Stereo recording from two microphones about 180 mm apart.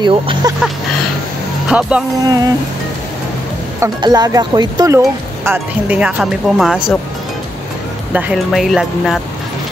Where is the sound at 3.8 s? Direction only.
20° right (ahead or behind).